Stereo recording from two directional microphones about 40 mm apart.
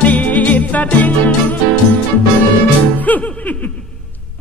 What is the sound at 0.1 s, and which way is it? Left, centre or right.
Jingle bell, left.